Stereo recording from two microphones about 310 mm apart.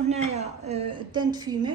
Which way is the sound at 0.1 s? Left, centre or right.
Right.